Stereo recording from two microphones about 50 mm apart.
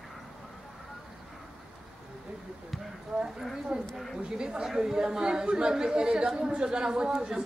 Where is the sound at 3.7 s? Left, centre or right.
Centre.